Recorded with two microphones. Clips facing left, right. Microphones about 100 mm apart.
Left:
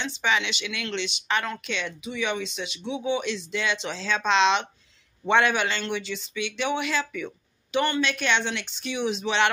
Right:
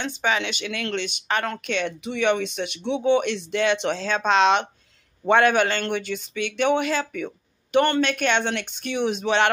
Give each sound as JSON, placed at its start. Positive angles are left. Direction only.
{"t": 0.0, "sound": "speech", "side_deg": -45}